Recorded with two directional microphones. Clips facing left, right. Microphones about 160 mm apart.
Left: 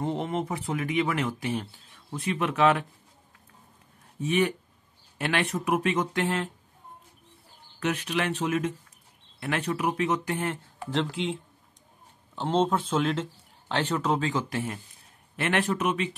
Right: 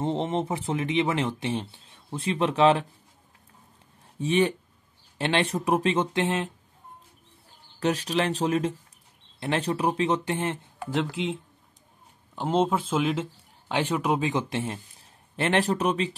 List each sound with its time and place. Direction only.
0.0 s speech: 25° right (ahead or behind)
4.2 s speech: 30° right (ahead or behind)
7.8 s speech: 35° right (ahead or behind)
10.9 s speech: centre (ahead or behind)
12.4 s speech: 10° right (ahead or behind); by 16.2 s 35° right (ahead or behind)